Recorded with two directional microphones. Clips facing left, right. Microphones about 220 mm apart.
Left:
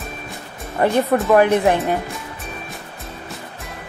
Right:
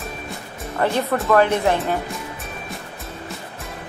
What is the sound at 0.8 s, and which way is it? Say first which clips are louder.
Speech: left 4 dB; 15° left (ahead or behind).